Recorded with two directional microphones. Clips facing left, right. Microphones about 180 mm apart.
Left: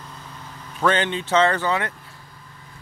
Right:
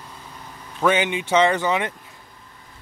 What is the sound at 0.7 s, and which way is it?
Speech, 10° right (ahead or behind).